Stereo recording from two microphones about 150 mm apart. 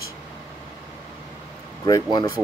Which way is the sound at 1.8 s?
25° left (ahead or behind).